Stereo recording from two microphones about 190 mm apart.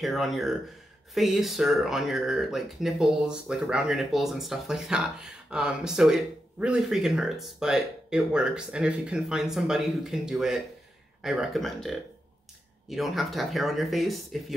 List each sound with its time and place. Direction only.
0.0 s speech: centre (ahead or behind)